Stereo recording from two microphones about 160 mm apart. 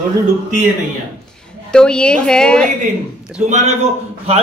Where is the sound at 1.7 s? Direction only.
5° left (ahead or behind).